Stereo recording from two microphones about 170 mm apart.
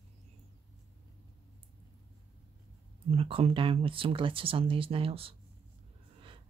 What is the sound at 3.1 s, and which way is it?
Speech, 35° right (ahead or behind).